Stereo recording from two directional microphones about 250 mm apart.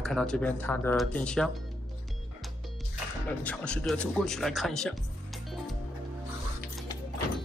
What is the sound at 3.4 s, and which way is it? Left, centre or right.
Speech, centre.